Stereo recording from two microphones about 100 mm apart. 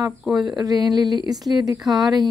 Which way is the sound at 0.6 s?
40° right (ahead or behind).